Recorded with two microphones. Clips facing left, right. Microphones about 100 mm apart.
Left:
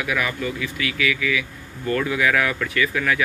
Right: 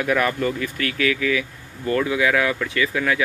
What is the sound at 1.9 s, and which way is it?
Speech, 25° right (ahead or behind).